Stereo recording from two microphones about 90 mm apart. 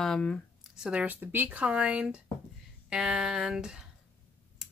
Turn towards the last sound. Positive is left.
turn(degrees=-5)  # may be behind; listen again after turning